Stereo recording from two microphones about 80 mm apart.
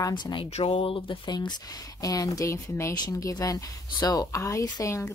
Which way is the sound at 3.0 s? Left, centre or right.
Left.